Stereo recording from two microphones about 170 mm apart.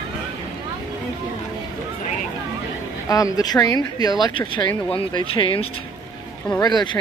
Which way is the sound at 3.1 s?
20° left (ahead or behind).